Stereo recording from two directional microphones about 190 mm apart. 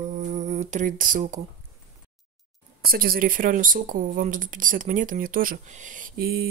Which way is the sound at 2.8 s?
50° right (ahead or behind).